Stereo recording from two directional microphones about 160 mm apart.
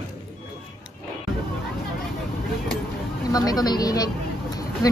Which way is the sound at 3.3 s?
25° left (ahead or behind).